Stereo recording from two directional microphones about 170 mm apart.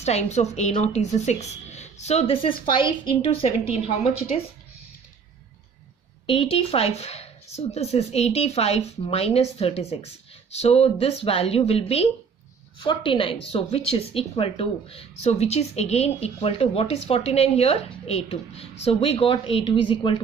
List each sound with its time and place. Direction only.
0.0 s speech: 40° left (ahead or behind)
6.2 s speech: 30° left (ahead or behind)